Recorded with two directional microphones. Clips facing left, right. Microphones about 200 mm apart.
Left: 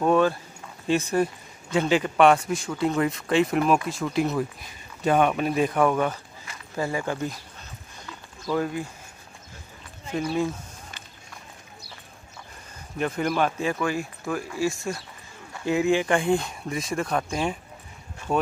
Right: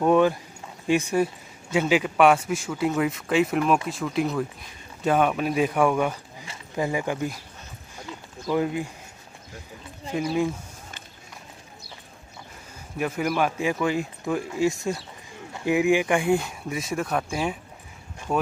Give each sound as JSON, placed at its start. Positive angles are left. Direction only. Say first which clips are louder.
{"t": 0.0, "sound": "speech", "louder": "right 1 dB", "side_deg": -15}
{"t": 6.4, "sound": "speech", "louder": "right 2 dB", "side_deg": -20}
{"t": 8.5, "sound": "speech", "louder": "right 2 dB", "side_deg": -15}
{"t": 10.1, "sound": "speech", "louder": "right 1 dB", "side_deg": -10}
{"t": 12.9, "sound": "speech", "louder": "even", "side_deg": -5}